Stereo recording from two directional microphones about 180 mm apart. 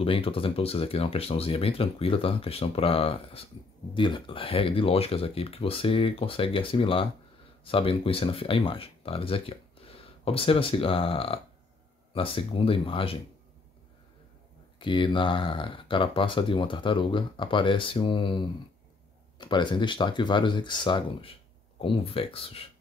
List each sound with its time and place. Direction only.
0.0 s speech: 30° left (ahead or behind)
14.8 s speech: 25° left (ahead or behind)